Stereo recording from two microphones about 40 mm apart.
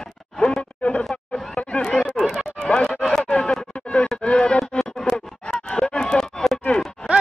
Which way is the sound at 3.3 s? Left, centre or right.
Centre.